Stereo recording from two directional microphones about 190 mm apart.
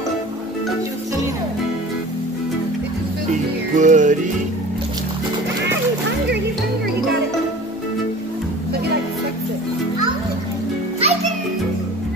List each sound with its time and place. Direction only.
3.7 s music: 40° right (ahead or behind)
11.0 s music: 35° right (ahead or behind)